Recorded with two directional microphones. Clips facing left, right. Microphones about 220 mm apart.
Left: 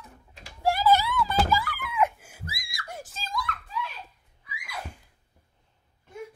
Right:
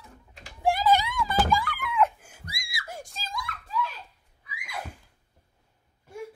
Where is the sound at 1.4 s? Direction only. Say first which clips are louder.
Right 1 dB; 5° left (ahead or behind).